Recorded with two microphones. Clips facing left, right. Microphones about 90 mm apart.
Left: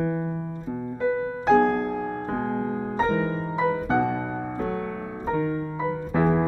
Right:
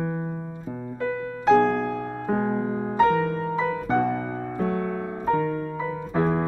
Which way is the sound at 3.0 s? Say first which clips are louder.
Right 4 dB; 20° left (ahead or behind).